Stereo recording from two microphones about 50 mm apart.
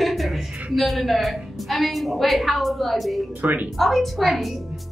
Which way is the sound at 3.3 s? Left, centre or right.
Right.